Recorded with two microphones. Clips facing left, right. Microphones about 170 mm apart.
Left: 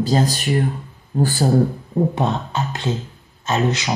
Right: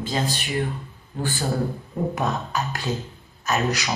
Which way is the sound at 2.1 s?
25° left (ahead or behind).